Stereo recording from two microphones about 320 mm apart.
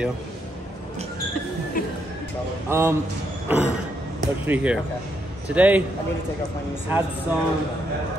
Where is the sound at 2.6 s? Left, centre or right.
Centre.